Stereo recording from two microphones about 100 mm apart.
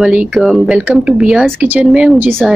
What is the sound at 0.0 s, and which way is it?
Speech, 10° right (ahead or behind).